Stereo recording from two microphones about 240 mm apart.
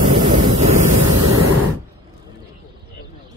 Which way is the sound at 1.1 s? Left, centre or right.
Right.